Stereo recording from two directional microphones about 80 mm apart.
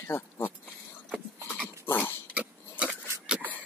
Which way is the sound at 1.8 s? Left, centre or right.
Left.